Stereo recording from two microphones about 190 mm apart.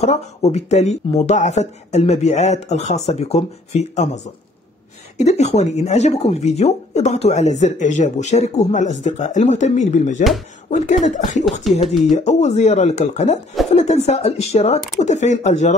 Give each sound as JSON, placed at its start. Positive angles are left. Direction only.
{"t": 0.0, "sound": "speech", "side_deg": 35}
{"t": 11.7, "sound": "speech", "side_deg": 0}
{"t": 12.1, "sound": "speech", "side_deg": 35}